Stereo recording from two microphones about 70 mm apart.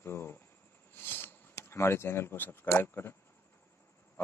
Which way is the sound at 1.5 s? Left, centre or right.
Left.